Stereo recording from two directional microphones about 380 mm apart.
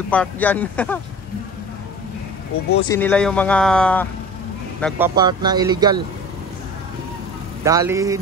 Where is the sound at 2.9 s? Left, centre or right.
Centre.